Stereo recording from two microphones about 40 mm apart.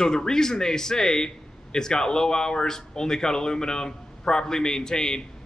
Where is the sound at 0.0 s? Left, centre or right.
Centre.